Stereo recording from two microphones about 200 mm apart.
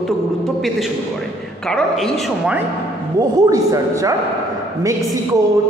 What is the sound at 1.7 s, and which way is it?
Speech, 5° left (ahead or behind).